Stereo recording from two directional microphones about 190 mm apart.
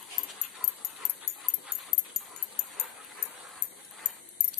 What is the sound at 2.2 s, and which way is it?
Dog, centre (ahead or behind).